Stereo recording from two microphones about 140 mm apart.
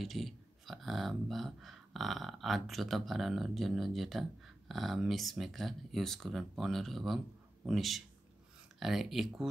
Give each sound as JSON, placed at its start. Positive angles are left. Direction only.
{"t": 0.0, "sound": "speech", "side_deg": 0}